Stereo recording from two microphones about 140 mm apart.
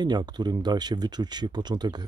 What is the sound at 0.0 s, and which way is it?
Speech, 30° right (ahead or behind).